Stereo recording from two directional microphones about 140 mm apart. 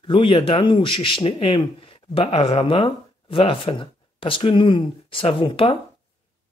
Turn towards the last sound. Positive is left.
turn(degrees=40)  # may be behind; listen again after turning